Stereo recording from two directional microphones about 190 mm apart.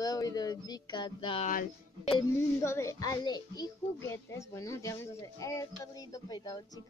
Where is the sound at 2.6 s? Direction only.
15° left (ahead or behind).